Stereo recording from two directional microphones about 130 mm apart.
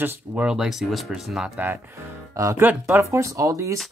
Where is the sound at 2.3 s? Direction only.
25° right (ahead or behind).